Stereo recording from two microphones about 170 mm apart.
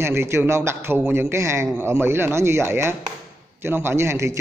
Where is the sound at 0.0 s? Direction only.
15° right (ahead or behind).